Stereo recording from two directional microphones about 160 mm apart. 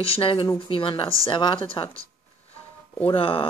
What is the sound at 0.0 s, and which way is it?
Speech, 35° left (ahead or behind).